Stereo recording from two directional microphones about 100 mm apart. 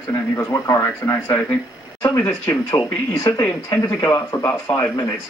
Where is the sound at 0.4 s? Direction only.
30° left (ahead or behind).